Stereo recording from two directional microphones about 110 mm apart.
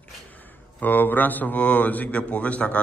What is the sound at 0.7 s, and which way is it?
Speech, 15° left (ahead or behind).